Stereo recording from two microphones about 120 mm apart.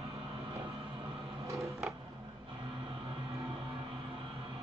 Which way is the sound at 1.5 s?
25° right (ahead or behind).